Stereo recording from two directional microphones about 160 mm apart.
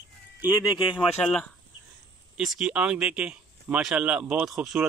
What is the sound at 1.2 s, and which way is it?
Speech, 5° left (ahead or behind).